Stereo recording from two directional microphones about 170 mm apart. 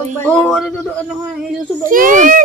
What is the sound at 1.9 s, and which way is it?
Speech, 50° right (ahead or behind).